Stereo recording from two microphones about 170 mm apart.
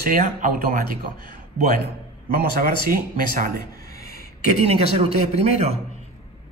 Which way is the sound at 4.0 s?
60° left (ahead or behind).